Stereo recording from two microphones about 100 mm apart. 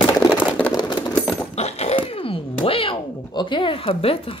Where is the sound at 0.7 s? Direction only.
40° left (ahead or behind).